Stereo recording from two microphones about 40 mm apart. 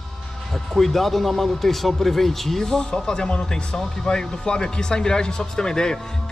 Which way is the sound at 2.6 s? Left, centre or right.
Centre.